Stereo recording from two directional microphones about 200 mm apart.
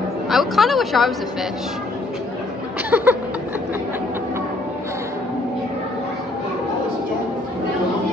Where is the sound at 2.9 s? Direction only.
10° right (ahead or behind).